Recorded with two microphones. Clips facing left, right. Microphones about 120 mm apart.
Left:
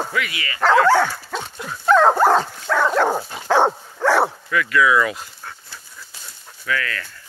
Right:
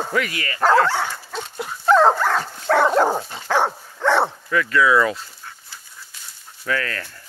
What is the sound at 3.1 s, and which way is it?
Dog, 15° left (ahead or behind).